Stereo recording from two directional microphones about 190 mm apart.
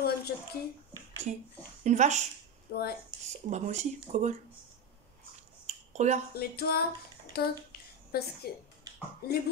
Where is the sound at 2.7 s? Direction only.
55° left (ahead or behind).